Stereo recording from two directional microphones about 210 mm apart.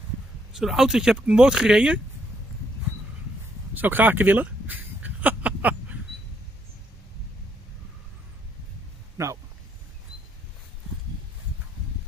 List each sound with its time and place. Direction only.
0.5 s speech: centre (ahead or behind)
3.7 s a sound: 10° right (ahead or behind)
9.2 s speech: 15° right (ahead or behind)